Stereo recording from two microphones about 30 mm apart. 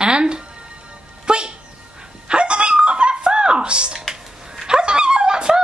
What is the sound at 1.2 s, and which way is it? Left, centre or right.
Dog, right.